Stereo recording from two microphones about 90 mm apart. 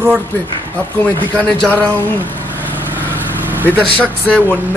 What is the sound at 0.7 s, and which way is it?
Speech, 15° left (ahead or behind).